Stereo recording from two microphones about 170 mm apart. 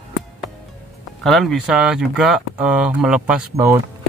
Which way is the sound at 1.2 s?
Centre (ahead or behind).